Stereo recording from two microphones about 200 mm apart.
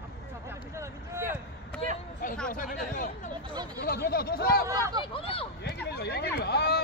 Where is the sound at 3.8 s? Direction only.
50° left (ahead or behind).